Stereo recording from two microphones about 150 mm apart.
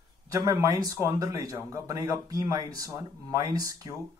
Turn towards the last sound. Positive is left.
turn(degrees=-25)  # may be behind; listen again after turning